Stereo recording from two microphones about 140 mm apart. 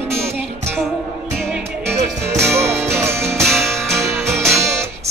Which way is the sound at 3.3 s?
Centre (ahead or behind).